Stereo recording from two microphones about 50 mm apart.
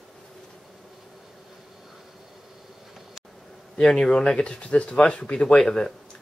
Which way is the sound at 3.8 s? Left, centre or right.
Centre.